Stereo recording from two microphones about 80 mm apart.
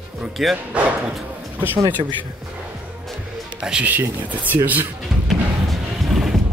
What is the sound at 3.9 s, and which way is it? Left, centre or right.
Speech, right.